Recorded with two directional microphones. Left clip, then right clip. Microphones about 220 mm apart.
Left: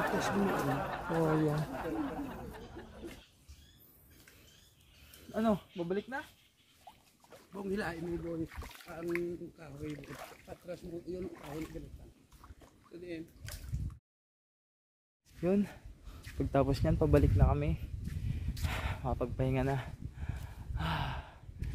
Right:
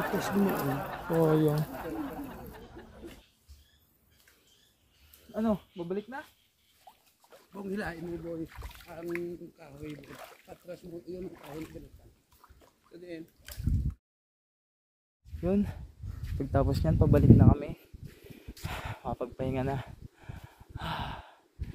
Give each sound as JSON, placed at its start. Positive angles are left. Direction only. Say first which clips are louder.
{"t": 0.0, "sound": "a sound", "louder": "right 2 dB", "side_deg": 0}
{"t": 5.3, "sound": "speech", "louder": "right 1 dB", "side_deg": 50}
{"t": 7.2, "sound": "speech", "louder": "even", "side_deg": -5}
{"t": 13.0, "sound": "speech", "louder": "right 1 dB", "side_deg": -10}
{"t": 15.4, "sound": "speech", "louder": "right 1 dB", "side_deg": -5}
{"t": 18.7, "sound": "a sound", "louder": "right 1 dB", "side_deg": -10}